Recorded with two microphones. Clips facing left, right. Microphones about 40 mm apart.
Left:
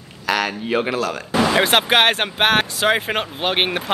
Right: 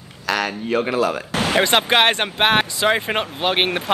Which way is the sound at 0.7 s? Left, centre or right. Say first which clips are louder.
Right 1 dB; centre.